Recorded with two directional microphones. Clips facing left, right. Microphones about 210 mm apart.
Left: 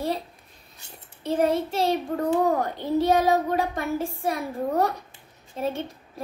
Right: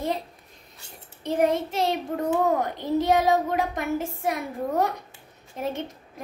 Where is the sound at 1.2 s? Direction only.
15° right (ahead or behind).